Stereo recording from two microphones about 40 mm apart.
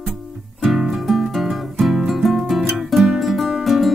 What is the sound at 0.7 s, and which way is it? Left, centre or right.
Music, centre.